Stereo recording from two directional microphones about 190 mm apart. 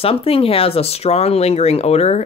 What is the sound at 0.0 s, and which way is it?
Speech, 30° left (ahead or behind).